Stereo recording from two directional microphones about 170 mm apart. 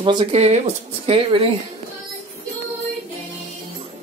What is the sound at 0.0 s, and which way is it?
Speech, 30° right (ahead or behind).